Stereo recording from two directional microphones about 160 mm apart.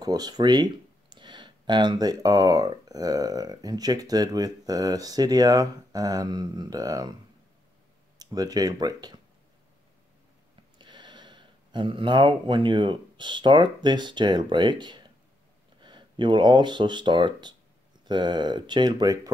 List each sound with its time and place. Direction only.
0.0 s speech: 25° right (ahead or behind)
8.2 s speech: 25° right (ahead or behind)
10.8 s speech: 30° right (ahead or behind)